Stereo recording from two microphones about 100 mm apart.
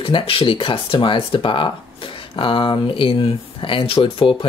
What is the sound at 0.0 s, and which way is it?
Speech, 60° left (ahead or behind).